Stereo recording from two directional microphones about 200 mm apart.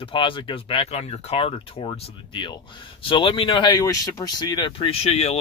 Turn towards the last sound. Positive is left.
turn(degrees=30)  # may be behind; listen again after turning